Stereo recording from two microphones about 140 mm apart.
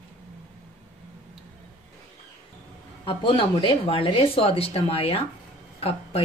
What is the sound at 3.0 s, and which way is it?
Speech, 35° left (ahead or behind).